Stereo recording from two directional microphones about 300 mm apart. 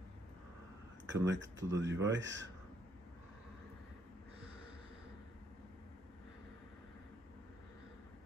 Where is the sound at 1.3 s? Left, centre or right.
Right.